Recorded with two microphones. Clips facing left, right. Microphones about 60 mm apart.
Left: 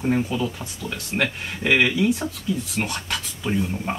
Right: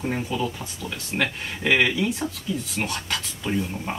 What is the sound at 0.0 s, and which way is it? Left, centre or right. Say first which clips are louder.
Speech: left 4 dB; centre.